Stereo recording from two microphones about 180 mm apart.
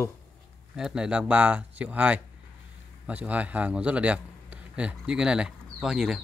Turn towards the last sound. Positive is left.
turn(degrees=-5)  # may be behind; listen again after turning